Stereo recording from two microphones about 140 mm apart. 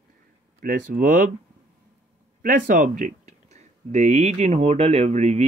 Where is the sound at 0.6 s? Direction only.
85° right.